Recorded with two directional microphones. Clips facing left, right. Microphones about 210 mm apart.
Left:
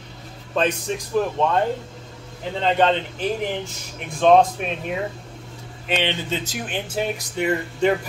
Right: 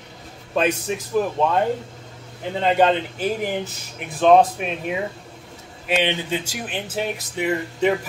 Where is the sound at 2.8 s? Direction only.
10° right (ahead or behind).